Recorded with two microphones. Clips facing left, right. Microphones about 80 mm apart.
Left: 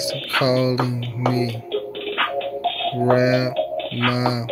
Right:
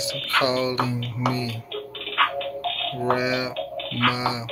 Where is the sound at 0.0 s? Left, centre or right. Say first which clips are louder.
Left 2 dB; centre.